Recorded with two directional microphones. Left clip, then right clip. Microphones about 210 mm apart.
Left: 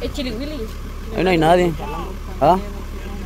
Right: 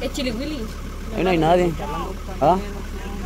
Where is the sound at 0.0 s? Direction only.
50° right (ahead or behind).